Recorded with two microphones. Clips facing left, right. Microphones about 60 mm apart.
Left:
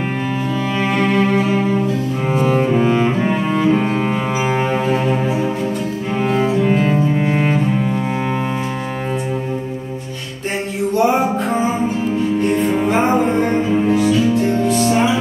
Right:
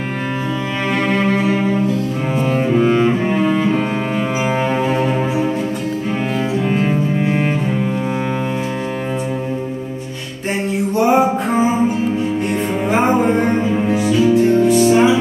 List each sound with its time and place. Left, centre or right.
0.9 s cello: centre
1.4 s music: centre
2.4 s cello: centre
6.6 s cello: centre
13.8 s music: centre